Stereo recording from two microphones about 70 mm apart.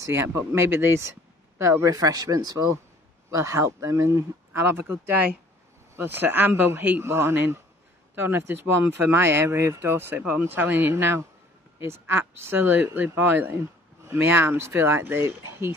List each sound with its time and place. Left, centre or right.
0.0 s speech: right